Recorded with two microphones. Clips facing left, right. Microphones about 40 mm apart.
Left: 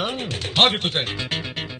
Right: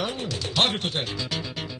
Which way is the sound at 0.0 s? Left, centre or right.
Left.